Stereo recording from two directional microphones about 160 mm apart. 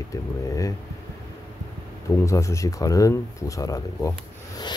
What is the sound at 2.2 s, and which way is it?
Speech, 20° left (ahead or behind).